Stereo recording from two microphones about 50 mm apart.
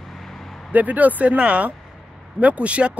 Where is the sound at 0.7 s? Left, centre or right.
Right.